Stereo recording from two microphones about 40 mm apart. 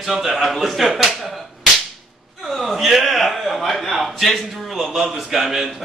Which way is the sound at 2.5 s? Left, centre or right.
Centre.